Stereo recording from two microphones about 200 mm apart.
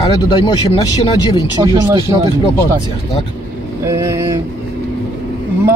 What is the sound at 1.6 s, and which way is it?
Speech, 15° right (ahead or behind).